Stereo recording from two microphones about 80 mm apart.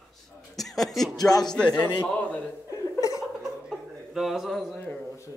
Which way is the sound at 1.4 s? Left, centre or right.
Centre.